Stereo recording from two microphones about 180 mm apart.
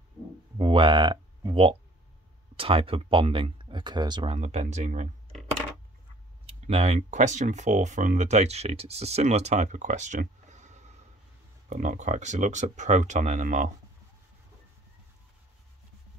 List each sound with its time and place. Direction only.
0.6 s a sound: 25° right (ahead or behind)
2.5 s speech: 30° right (ahead or behind)
6.4 s speech: 35° right (ahead or behind)